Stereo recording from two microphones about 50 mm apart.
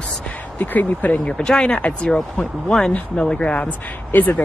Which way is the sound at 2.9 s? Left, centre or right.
Left.